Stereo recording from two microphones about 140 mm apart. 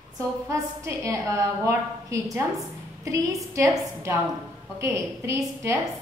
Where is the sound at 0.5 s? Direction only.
20° right (ahead or behind).